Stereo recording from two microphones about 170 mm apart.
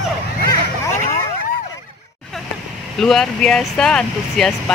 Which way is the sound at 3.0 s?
5° left (ahead or behind).